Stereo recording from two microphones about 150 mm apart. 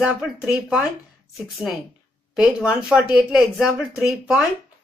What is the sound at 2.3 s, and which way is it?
Speech, 5° right (ahead or behind).